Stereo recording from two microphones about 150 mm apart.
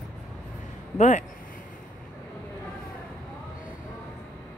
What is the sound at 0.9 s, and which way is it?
Speech, 50° left (ahead or behind).